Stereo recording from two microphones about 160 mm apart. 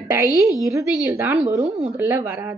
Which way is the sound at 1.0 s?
10° right (ahead or behind).